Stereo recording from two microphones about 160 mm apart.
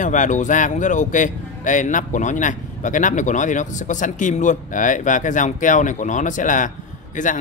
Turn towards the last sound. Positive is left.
turn(degrees=55)  # may be behind; listen again after turning